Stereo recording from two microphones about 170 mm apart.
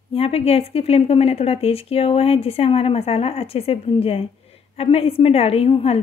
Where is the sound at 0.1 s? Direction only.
35° left (ahead or behind).